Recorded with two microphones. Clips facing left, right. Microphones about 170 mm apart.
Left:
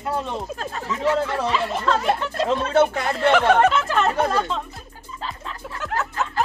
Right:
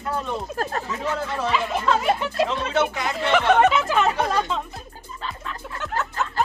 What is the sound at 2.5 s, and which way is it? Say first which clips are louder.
Speech: left 5 dB; 50° left (ahead or behind).